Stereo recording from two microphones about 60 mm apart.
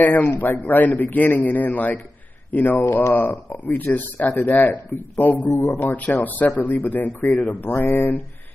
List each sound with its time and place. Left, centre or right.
0.0 s a man's voice: left
2.8 s speech: left
3.1 s a man's voice: left
5.5 s speech: left
5.8 s a man's voice: left